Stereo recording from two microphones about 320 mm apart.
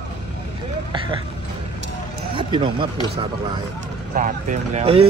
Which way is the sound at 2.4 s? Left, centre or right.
Centre.